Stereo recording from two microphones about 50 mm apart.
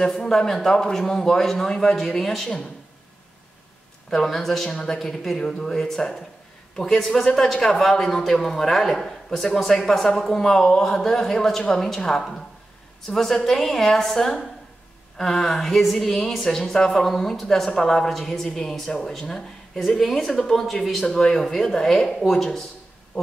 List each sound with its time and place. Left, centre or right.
0.0 s a man's voice: centre
4.1 s a man's voice: centre
4.9 s a woman's voice: centre